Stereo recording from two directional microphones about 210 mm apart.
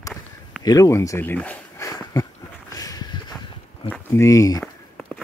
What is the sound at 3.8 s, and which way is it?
Speech, 10° left (ahead or behind).